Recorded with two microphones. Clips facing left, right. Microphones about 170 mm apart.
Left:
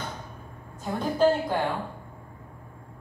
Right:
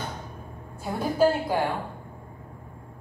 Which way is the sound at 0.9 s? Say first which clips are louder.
Even; 10° right (ahead or behind).